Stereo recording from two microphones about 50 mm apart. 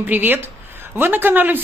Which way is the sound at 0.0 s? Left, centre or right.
Right.